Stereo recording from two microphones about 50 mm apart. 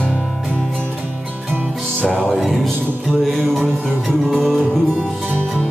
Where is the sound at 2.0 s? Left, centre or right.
Left.